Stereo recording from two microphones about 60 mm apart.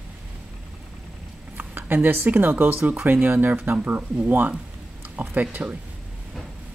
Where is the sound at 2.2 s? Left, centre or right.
Right.